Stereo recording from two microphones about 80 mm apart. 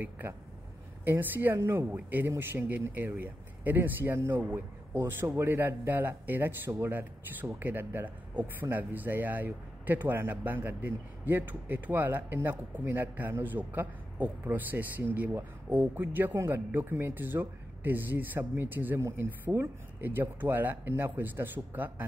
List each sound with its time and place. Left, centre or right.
0.0 s speech: right
18.9 s speech: right
19.2 s speech: right